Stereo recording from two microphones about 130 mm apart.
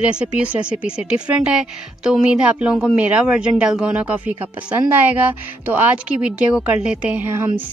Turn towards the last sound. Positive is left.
turn(degrees=-15)  # may be behind; listen again after turning